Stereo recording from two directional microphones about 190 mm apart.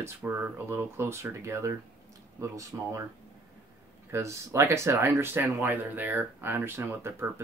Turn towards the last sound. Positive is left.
turn(degrees=-10)  # may be behind; listen again after turning